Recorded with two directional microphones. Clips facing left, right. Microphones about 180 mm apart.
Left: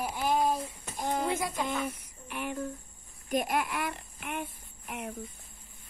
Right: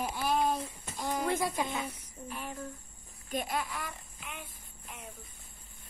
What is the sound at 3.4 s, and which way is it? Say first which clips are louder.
A child's voice: left 3 dB; 60° left (ahead or behind).